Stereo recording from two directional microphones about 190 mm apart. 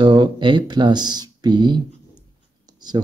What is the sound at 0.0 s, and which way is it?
Speech, 25° right (ahead or behind).